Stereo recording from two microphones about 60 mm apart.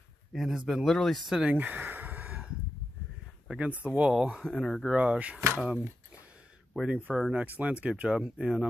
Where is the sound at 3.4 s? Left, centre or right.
Right.